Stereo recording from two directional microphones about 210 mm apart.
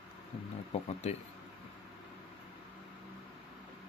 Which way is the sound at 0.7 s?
30° left (ahead or behind).